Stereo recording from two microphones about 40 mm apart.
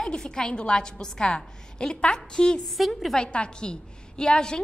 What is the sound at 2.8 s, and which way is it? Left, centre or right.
Speech, centre.